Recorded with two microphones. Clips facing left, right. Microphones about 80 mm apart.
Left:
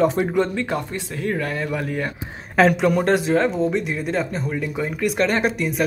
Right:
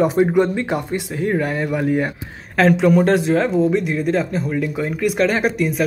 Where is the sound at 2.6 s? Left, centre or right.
Centre.